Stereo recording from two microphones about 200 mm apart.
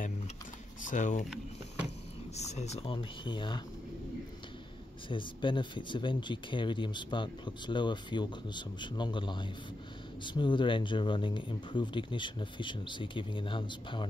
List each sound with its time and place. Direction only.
0.8 s speech: 40° left (ahead or behind)
2.3 s speech: 35° left (ahead or behind)
5.1 s speech: 25° left (ahead or behind)